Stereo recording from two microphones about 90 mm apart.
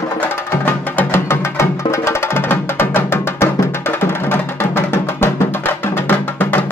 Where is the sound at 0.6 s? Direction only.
25° left (ahead or behind).